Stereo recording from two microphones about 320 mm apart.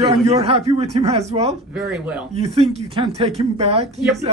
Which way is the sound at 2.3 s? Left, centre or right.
Centre.